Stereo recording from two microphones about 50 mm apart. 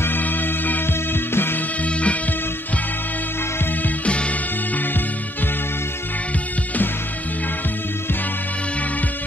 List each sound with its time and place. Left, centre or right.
0.0 s music: left
1.9 s music: left
4.0 s music: left